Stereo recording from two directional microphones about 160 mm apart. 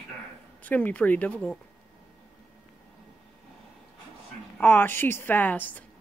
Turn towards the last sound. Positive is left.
turn(degrees=10)  # may be behind; listen again after turning